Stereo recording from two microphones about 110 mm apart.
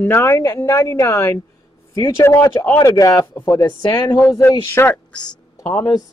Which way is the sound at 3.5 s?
40° left (ahead or behind).